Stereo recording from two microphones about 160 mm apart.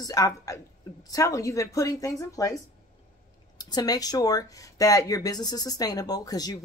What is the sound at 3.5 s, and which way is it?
Speech, 25° left (ahead or behind).